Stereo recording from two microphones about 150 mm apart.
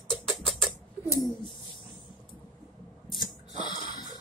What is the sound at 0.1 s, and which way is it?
Rodents, 5° left (ahead or behind).